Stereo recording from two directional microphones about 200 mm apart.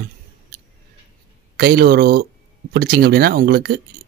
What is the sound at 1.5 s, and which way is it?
Speech, 50° right (ahead or behind).